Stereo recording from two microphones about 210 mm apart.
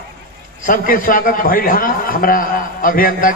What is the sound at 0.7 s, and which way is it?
A man's voice, 40° left (ahead or behind).